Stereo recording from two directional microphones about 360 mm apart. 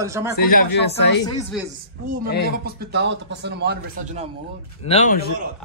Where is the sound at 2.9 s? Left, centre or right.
Right.